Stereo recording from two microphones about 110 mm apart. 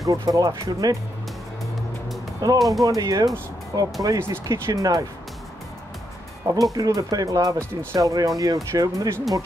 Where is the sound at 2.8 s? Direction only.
35° right (ahead or behind).